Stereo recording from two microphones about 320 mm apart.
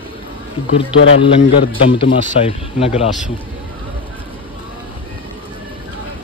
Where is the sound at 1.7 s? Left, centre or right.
Centre.